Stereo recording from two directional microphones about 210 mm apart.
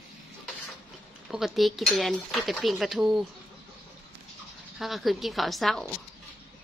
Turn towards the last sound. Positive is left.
turn(degrees=0)  # may be behind; listen again after turning